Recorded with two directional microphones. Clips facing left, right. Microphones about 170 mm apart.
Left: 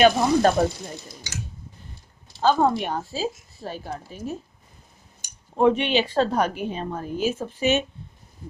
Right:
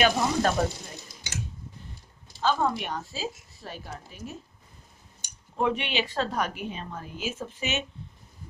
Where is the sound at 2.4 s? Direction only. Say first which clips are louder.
Left 6 dB; 40° left (ahead or behind).